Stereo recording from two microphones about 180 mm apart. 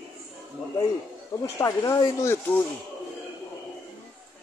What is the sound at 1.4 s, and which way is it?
Speech, 15° left (ahead or behind).